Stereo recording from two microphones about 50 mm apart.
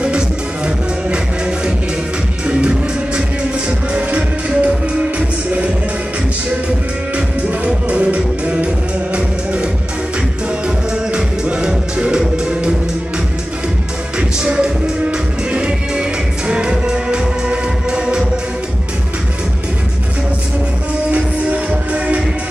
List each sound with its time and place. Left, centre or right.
0.7 s music: centre
7.2 s music: right
10.9 s music: centre
14.1 s music: centre
21.1 s music: right